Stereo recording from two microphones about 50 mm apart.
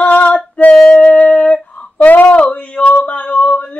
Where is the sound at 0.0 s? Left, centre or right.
Left.